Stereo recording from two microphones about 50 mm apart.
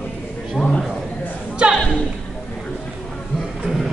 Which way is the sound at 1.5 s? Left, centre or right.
Right.